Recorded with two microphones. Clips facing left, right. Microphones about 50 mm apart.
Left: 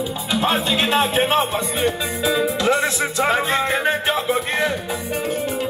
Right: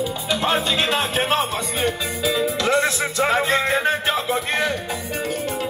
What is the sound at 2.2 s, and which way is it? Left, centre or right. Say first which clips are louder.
Music: left 2 dB; left.